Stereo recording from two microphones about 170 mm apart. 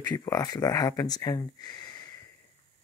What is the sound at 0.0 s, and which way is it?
Speech, 25° left (ahead or behind).